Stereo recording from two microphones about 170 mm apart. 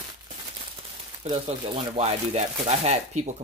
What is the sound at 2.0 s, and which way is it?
Speech, 40° right (ahead or behind).